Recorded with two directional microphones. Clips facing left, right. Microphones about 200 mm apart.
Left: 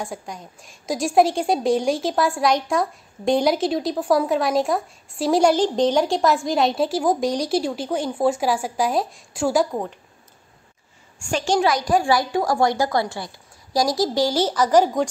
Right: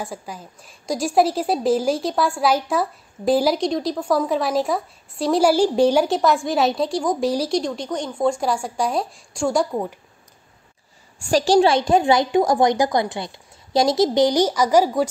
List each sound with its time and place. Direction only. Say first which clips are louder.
0.0 s a woman's voice: even; centre (ahead or behind)
11.1 s a woman's voice: right 5 dB; 35° right (ahead or behind); by 15.0 s 10° right (ahead or behind)